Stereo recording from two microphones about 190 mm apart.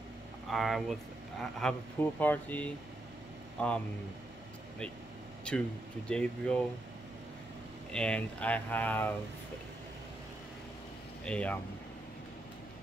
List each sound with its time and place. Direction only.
0.5 s speech: centre (ahead or behind)
5.5 s speech: 5° left (ahead or behind)
7.9 s speech: 5° left (ahead or behind)
11.2 s speech: 5° left (ahead or behind)